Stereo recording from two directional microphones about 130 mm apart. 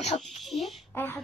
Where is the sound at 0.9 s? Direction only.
15° left (ahead or behind).